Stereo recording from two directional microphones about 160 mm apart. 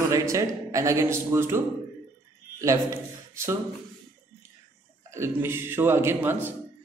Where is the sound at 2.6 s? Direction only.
20° right (ahead or behind).